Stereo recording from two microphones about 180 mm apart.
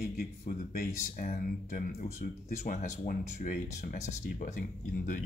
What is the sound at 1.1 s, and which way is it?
Speech, 45° left (ahead or behind).